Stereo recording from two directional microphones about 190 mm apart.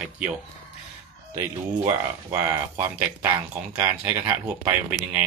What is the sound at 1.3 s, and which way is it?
Speech, 15° right (ahead or behind).